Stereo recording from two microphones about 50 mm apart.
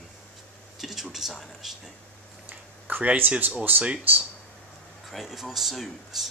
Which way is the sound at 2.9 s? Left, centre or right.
Right.